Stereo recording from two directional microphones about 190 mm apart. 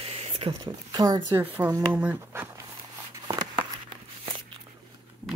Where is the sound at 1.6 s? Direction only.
15° right (ahead or behind).